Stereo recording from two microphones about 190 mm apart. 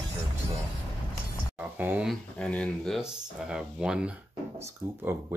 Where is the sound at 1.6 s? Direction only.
10° right (ahead or behind).